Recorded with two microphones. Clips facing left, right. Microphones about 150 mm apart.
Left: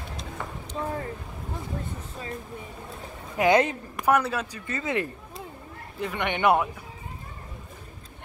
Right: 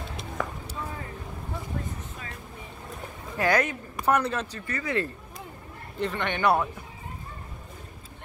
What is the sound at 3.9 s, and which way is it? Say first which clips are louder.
Speech: left 1 dB; 5° left (ahead or behind).